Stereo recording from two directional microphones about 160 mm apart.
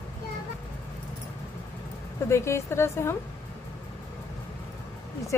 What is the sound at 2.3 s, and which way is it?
Speech, 15° left (ahead or behind).